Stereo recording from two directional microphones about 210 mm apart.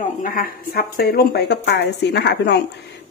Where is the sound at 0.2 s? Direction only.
40° left (ahead or behind).